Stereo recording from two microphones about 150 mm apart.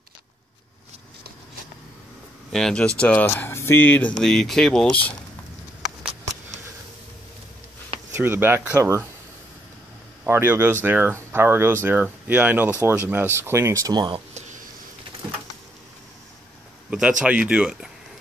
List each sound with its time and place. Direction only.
2.5 s speech: 5° left (ahead or behind)
8.1 s speech: 15° right (ahead or behind)
10.2 s speech: 15° right (ahead or behind); by 14.2 s 30° right (ahead or behind)
17.2 s speech: 10° right (ahead or behind)